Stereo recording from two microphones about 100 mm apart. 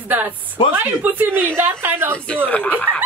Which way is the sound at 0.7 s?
20° right (ahead or behind).